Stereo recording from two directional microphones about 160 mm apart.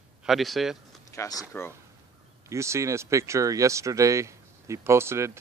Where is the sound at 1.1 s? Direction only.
20° left (ahead or behind).